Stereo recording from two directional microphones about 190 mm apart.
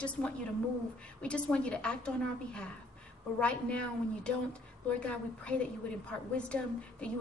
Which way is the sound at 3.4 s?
5° left (ahead or behind).